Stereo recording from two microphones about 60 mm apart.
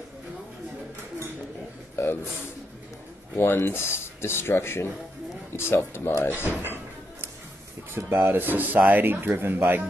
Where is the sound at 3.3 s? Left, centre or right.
Left.